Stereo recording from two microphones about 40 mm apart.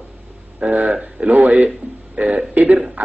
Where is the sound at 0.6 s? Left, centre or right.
Right.